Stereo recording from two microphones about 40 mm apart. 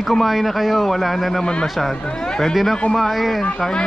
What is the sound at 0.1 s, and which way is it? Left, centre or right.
A man's voice, centre.